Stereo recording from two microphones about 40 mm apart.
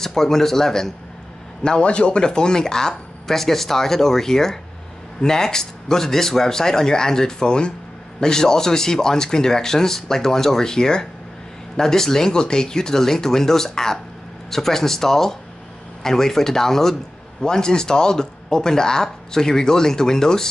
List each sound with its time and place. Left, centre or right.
0.0 s speech: centre
1.6 s speech: left